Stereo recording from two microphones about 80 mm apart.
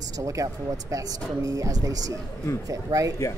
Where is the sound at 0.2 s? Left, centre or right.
Right.